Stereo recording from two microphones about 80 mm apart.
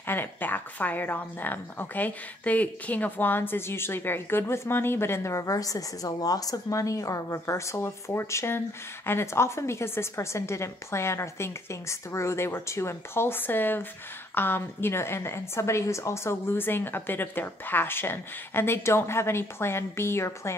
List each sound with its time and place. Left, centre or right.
0.0 s a woman's voice: left